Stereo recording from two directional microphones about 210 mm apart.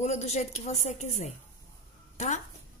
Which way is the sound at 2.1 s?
35° left (ahead or behind).